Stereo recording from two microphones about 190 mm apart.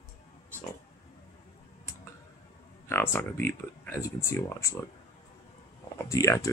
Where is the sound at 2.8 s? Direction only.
10° left (ahead or behind).